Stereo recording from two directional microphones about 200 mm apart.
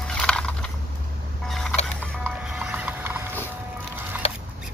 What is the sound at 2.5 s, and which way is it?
Mechanisms, 5° right (ahead or behind).